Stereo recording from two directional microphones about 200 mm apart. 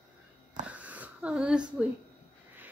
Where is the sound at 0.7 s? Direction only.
5° right (ahead or behind).